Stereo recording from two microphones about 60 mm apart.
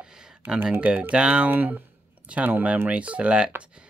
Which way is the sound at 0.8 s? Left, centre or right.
Right.